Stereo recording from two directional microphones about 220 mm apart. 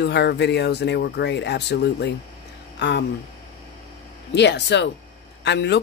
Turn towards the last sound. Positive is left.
turn(degrees=50)  # may be behind; listen again after turning